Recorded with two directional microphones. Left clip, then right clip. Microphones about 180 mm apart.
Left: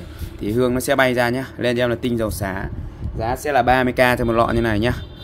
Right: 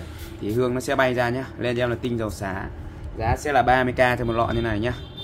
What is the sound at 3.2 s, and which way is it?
Speech, 40° left (ahead or behind).